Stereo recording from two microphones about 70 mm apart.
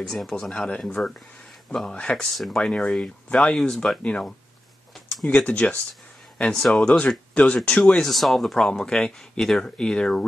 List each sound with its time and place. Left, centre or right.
0.1 s speech: centre
8.0 s speech: centre